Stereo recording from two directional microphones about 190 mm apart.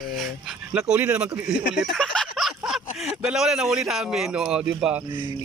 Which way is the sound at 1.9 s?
Centre (ahead or behind).